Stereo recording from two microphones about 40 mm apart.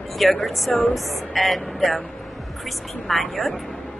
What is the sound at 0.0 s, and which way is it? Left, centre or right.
Speech, centre.